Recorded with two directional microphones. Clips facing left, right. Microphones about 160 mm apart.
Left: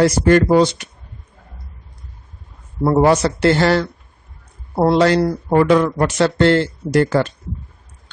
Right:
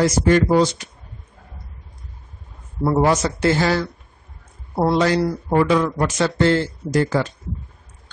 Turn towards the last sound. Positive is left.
turn(degrees=65)  # may be behind; listen again after turning